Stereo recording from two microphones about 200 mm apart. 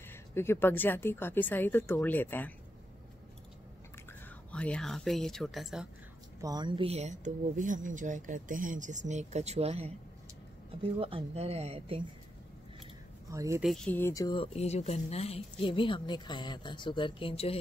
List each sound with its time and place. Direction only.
0.1 s speech: 10° left (ahead or behind)
4.5 s speech: 5° left (ahead or behind)
6.4 s speech: 20° right (ahead or behind)
13.3 s speech: 15° right (ahead or behind)
13.6 s speech: centre (ahead or behind); by 17.6 s 25° left (ahead or behind)